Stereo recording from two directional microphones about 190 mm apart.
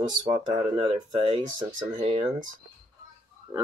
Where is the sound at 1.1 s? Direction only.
25° right (ahead or behind).